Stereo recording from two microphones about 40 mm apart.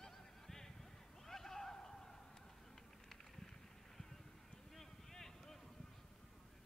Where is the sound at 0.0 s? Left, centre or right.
Centre.